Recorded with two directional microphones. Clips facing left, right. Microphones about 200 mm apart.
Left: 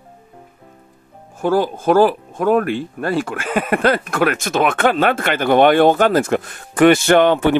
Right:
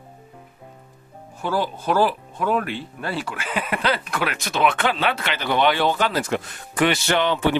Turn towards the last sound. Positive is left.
turn(degrees=50)  # may be behind; listen again after turning